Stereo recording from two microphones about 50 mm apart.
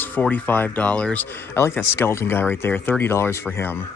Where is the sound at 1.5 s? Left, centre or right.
Left.